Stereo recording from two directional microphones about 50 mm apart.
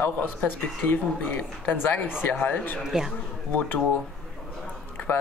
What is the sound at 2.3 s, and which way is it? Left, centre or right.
Speech, left.